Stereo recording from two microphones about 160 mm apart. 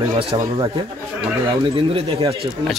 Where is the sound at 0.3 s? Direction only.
30° right (ahead or behind).